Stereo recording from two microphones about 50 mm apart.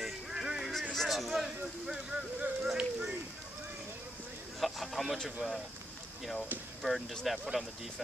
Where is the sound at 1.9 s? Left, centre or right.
Centre.